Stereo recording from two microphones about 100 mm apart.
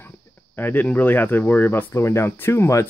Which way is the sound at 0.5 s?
20° left (ahead or behind).